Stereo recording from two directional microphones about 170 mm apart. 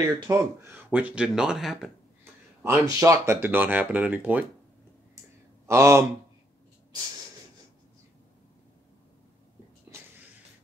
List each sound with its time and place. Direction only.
0.3 s speech: 15° right (ahead or behind)
2.6 s speech: 15° right (ahead or behind)
5.7 s speech: 15° right (ahead or behind)